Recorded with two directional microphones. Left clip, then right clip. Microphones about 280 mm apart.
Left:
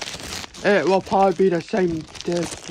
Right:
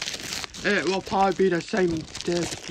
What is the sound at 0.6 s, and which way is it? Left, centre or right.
Speech, centre.